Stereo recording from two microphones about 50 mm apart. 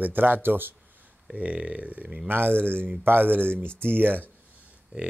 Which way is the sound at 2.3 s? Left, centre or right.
Right.